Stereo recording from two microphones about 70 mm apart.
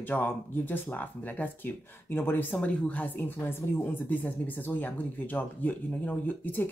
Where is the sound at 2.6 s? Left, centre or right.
Left.